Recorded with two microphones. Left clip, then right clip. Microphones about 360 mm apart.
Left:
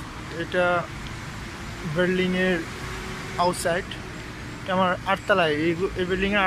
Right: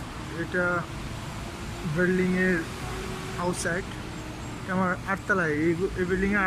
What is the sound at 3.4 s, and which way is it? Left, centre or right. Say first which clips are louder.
Speech: left 7 dB; centre.